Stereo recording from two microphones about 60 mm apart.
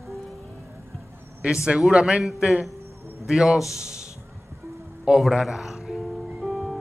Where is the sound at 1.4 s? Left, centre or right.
Centre.